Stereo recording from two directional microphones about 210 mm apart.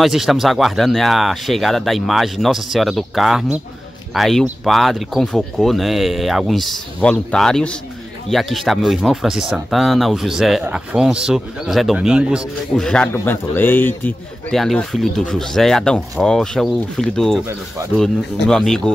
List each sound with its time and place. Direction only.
0.0 s speech: centre (ahead or behind)